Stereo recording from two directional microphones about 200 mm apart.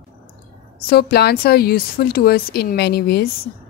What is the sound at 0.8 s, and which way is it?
Speech, 50° left (ahead or behind).